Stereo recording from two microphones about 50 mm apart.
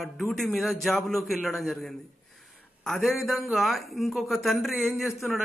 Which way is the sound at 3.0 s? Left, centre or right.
Centre.